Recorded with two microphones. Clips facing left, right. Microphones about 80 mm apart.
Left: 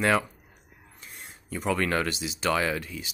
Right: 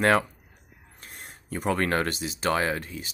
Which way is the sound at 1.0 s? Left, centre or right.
Right.